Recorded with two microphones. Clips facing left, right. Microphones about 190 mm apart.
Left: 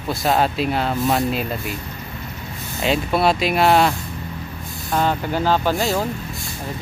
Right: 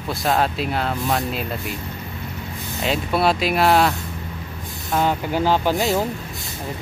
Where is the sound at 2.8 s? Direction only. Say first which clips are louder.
Left 2 dB; centre (ahead or behind).